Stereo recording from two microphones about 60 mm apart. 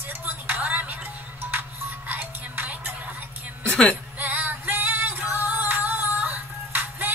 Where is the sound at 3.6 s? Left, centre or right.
Left.